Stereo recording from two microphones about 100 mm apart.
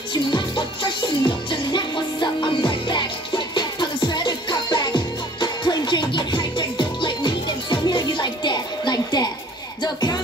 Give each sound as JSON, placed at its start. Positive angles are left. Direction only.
{"t": 0.1, "sound": "music", "side_deg": 50}